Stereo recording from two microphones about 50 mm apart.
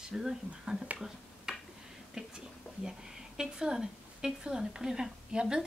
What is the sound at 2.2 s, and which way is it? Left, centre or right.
A woman's voice, centre.